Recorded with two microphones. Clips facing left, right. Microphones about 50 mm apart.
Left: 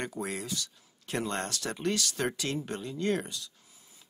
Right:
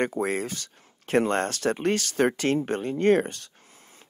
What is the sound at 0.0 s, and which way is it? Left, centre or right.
Speech, right.